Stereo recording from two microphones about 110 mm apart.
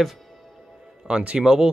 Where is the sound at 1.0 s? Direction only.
10° right (ahead or behind).